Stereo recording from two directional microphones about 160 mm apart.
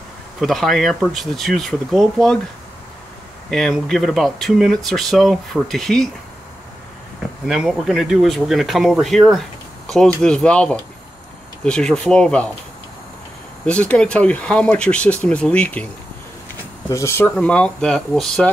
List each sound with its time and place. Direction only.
0.4 s speech: centre (ahead or behind)
3.4 s speech: 5° left (ahead or behind)
7.4 s speech: centre (ahead or behind)
13.7 s speech: 10° left (ahead or behind)
16.9 s speech: 15° left (ahead or behind)